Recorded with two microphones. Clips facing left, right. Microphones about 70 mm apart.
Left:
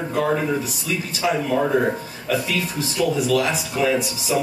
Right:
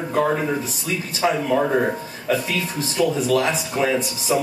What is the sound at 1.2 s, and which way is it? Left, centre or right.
Speech, right.